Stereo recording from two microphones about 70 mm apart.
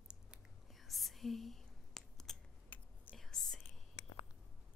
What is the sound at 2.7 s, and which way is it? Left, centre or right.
Whispering, left.